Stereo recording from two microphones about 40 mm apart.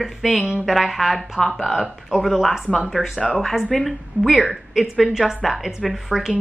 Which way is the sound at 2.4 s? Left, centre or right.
Centre.